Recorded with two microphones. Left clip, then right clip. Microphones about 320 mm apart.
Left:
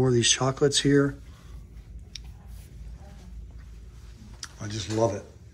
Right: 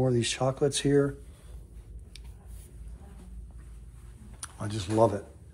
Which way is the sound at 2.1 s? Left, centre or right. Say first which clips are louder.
Left 9 dB; centre.